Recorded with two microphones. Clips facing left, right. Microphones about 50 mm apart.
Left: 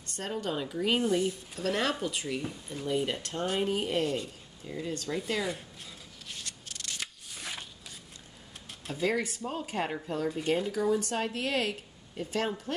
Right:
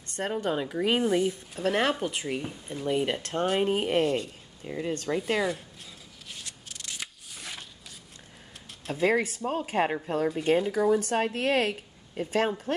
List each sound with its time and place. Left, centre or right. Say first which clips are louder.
0.0 s speech: right 5 dB; right
1.0 s speech: right 3 dB; centre
6.2 s scissors: even; centre
9.0 s speech: right 5 dB; right